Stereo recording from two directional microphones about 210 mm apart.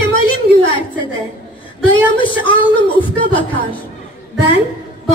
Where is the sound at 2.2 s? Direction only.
25° left (ahead or behind).